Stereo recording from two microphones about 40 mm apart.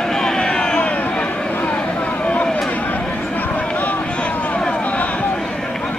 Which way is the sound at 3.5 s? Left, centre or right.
Left.